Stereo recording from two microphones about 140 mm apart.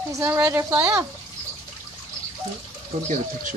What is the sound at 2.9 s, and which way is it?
Speech, 50° right (ahead or behind).